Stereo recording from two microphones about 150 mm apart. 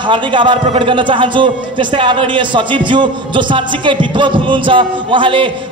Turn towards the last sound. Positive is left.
turn(degrees=-35)  # may be behind; listen again after turning